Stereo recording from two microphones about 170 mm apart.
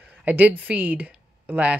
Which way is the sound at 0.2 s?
10° right (ahead or behind).